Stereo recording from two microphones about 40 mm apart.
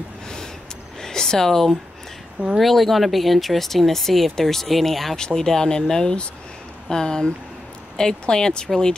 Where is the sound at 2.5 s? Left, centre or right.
Centre.